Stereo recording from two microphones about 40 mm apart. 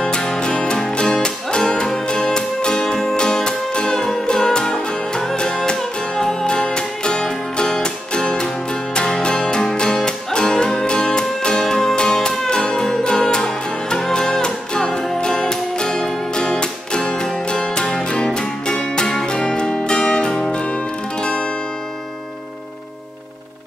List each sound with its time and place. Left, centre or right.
0.0 s music: left
20.5 s zither: left